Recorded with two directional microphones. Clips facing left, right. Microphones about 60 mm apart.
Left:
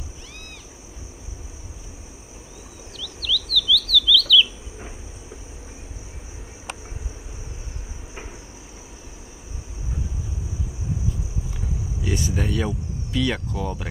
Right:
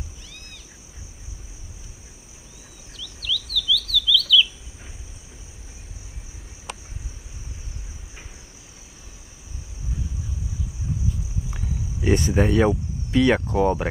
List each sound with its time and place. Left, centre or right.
3.0 s chirp: centre
11.5 s speech: right